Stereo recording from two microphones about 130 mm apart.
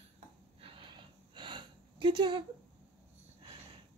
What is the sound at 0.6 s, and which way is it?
Gasp, 40° right (ahead or behind).